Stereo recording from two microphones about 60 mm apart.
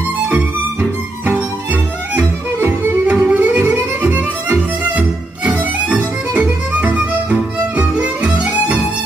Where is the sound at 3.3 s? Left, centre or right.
Right.